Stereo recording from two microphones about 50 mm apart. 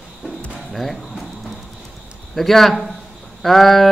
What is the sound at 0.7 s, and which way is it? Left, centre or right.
Music, centre.